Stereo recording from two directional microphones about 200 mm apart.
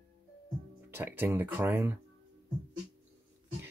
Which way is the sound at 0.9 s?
10° right (ahead or behind).